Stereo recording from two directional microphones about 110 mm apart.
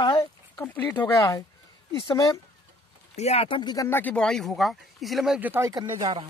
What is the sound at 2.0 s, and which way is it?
Speech, 50° left (ahead or behind).